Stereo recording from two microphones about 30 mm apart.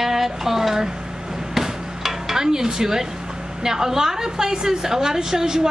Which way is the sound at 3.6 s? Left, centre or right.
Centre.